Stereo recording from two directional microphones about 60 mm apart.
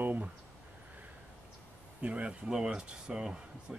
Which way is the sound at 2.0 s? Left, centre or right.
Right.